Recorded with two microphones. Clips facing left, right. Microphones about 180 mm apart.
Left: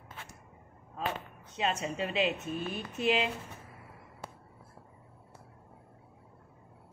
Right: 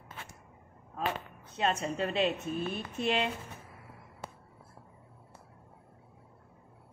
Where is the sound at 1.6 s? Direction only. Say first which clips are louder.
Right 2 dB; centre (ahead or behind).